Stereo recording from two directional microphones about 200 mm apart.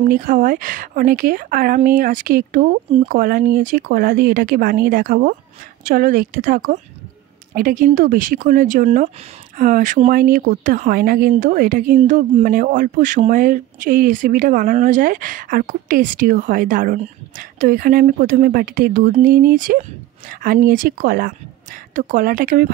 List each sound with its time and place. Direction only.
0.0 s speech: 45° right (ahead or behind)
2.9 s speech: 30° right (ahead or behind)
3.2 s speech: 45° right (ahead or behind)